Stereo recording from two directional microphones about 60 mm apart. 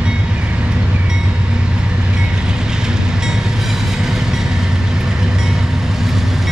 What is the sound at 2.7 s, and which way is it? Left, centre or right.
Train, centre.